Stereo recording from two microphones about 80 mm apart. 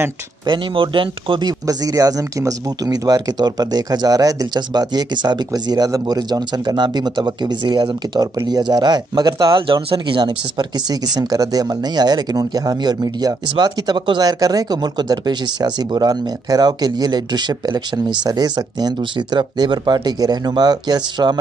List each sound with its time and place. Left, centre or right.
0.5 s speech: right
1.7 s speech: right
14.2 s speech: right